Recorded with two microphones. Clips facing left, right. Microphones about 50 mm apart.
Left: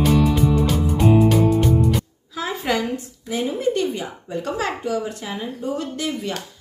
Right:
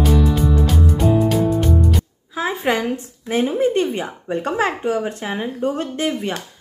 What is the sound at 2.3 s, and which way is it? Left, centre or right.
Speech, right.